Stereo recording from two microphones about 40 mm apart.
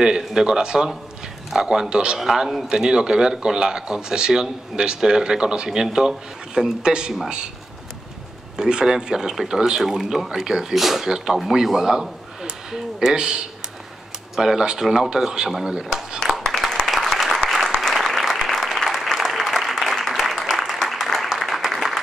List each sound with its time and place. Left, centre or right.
0.2 s a man's voice: centre
8.5 s a man's voice: centre
10.7 s speech: centre
11.1 s a man's voice: centre
11.5 s a sound: centre
13.1 s speech: right
14.3 s speech: centre
14.6 s a man's voice: centre
16.8 s applause: centre